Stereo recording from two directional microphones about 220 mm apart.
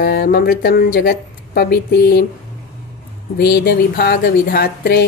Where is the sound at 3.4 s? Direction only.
45° left (ahead or behind).